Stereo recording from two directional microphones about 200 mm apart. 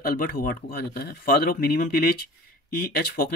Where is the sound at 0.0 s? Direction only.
45° left (ahead or behind).